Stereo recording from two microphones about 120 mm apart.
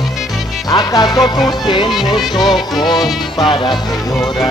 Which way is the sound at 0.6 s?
35° left (ahead or behind).